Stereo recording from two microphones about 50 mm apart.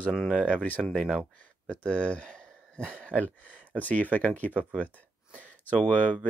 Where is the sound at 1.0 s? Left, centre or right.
Centre.